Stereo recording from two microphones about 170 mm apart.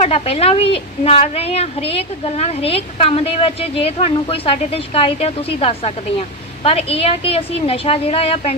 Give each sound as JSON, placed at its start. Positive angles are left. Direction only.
{"t": 0.0, "sound": "a woman's voice", "side_deg": 35}